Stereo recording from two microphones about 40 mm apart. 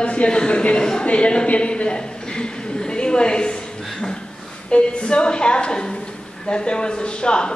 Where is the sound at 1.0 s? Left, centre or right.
Left.